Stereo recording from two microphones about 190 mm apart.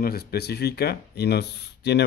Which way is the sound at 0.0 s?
55° left (ahead or behind).